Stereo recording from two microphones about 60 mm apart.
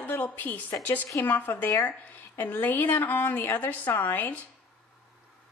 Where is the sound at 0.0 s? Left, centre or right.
Left.